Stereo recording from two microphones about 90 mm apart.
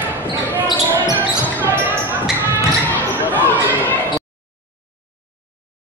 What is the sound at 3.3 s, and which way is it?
Chatter, 20° left (ahead or behind).